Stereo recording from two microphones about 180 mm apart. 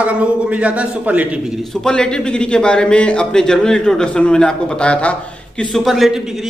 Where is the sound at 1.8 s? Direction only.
5° left (ahead or behind).